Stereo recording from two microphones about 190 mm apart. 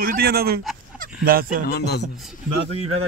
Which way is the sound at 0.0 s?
50° right (ahead or behind).